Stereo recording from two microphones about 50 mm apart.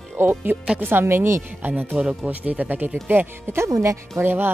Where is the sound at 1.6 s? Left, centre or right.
Right.